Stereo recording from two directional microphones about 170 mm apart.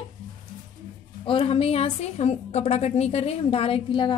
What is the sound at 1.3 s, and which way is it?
A woman's voice, 30° left (ahead or behind).